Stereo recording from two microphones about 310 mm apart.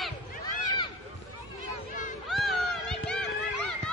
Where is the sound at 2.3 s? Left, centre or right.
Centre.